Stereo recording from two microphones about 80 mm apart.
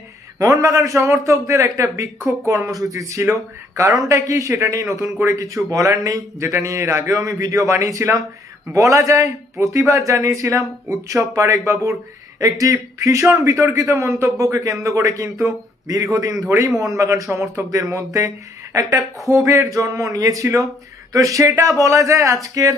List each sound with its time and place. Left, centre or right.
0.4 s a man's voice: right